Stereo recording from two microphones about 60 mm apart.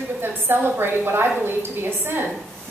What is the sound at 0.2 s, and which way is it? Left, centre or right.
A woman's voice, right.